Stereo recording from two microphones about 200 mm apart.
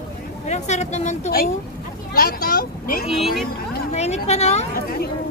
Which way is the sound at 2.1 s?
50° left (ahead or behind).